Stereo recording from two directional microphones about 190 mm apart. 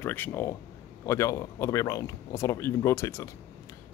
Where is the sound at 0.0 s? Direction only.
10° left (ahead or behind).